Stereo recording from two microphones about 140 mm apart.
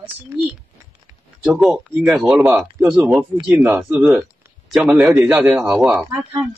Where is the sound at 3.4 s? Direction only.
15° right (ahead or behind).